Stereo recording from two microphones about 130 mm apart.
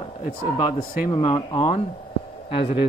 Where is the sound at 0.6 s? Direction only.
35° left (ahead or behind).